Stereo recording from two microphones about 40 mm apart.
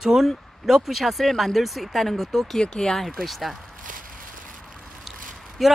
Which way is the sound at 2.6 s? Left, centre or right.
Centre.